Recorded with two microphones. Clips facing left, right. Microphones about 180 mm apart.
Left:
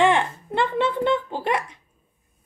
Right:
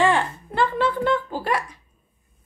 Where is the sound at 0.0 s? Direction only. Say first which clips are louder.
Left 1 dB; 20° left (ahead or behind).